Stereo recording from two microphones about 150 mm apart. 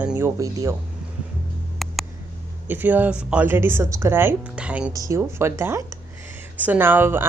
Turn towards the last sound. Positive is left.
turn(degrees=-15)  # may be behind; listen again after turning